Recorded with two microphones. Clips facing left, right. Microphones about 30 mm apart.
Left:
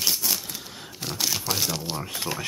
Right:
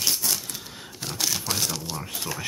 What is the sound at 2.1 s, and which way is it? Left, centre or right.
Speech, left.